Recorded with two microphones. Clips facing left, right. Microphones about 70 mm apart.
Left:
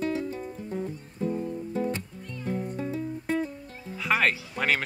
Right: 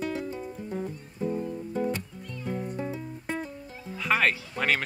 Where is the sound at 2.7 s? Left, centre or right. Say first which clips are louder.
Left 3 dB; centre.